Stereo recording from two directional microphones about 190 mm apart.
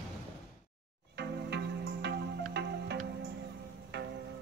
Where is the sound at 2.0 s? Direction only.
60° right (ahead or behind).